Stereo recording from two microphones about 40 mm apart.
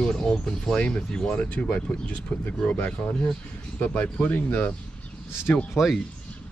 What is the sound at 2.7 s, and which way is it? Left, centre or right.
Speech, left.